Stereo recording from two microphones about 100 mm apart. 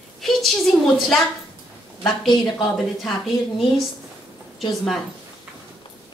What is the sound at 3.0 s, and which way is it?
Speech, centre (ahead or behind).